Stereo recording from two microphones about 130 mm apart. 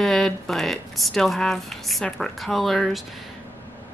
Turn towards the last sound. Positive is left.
turn(degrees=0)  # may be behind; listen again after turning